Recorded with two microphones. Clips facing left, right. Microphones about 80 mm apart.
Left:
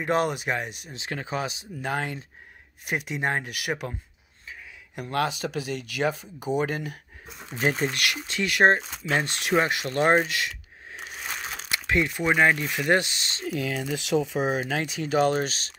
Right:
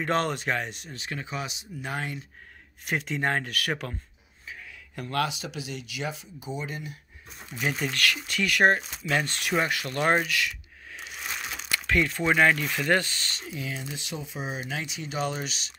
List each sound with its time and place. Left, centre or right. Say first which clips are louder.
0.0 s speech: left 2 dB; centre
1.2 s speech: left 5 dB; left
2.8 s speech: even; centre
5.0 s speech: left 1 dB; centre
5.3 s speech: left 6 dB; left
7.5 s speech: left 4 dB; left
7.9 s speech: right 1 dB; left
13.5 s speech: left 9 dB; left
13.8 s speech: left 11 dB; left